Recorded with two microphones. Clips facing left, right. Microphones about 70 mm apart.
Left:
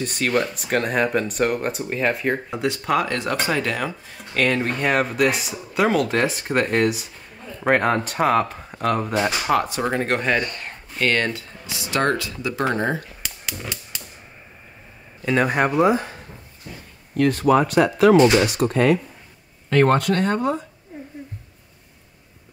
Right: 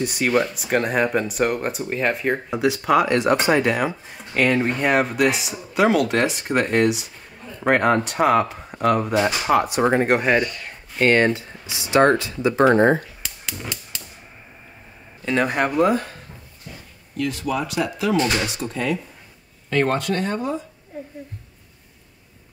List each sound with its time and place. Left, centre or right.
0.0 s speech: centre
9.8 s speech: right
15.2 s speech: centre
17.2 s speech: left